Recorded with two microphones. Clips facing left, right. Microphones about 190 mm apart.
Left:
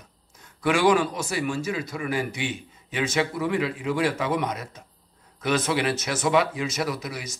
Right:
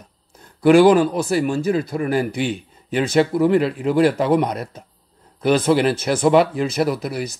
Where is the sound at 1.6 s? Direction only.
55° right (ahead or behind).